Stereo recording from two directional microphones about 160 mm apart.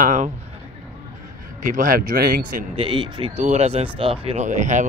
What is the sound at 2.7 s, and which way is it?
Speech, 35° right (ahead or behind).